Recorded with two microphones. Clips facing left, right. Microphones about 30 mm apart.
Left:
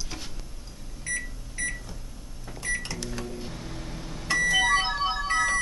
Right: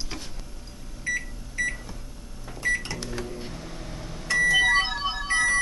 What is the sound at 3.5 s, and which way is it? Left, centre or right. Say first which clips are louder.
Microwave oven: even; centre.